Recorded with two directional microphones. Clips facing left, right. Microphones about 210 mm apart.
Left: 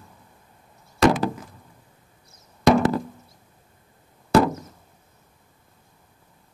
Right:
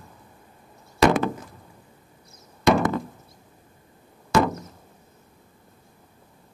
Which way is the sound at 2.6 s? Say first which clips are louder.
Left 2 dB; 35° left (ahead or behind).